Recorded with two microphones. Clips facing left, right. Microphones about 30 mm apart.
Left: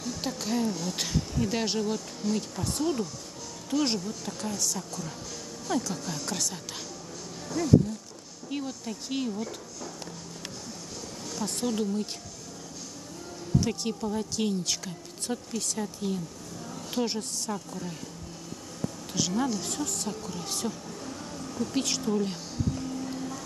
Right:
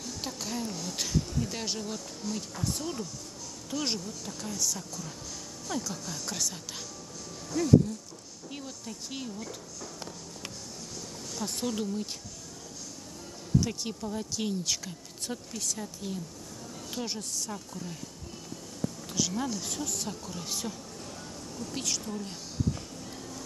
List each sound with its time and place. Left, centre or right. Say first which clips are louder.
0.0 s speech: left 4 dB; centre
8.5 s speech: left 7 dB; centre
11.3 s speech: left 3 dB; centre
13.6 s speech: left 3 dB; centre
19.1 s speech: left 4 dB; centre
21.7 s speech: left 7 dB; left